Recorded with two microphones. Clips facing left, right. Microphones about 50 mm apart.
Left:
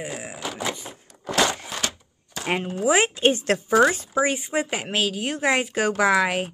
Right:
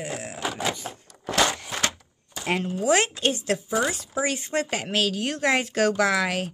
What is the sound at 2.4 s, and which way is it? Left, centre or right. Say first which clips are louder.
Speech: left 1 dB; centre.